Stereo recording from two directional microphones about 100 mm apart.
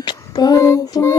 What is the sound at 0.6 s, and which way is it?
Child singing, 30° left (ahead or behind).